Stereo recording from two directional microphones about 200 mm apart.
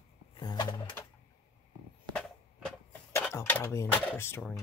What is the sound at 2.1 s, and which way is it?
Skateboard, 5° left (ahead or behind).